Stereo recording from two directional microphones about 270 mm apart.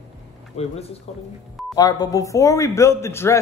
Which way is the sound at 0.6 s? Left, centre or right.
Left.